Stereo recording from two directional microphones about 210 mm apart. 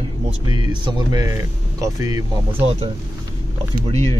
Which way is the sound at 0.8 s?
20° right (ahead or behind).